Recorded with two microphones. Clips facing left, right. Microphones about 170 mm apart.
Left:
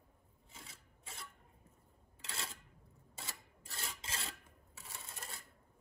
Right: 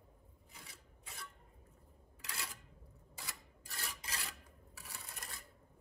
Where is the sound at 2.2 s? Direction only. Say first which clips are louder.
Left 1 dB; 25° left (ahead or behind).